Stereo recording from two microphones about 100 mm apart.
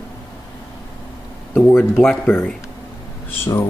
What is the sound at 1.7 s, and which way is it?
Speech, 20° left (ahead or behind).